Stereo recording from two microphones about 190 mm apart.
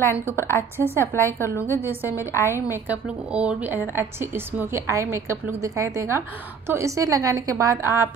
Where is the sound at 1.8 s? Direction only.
10° right (ahead or behind).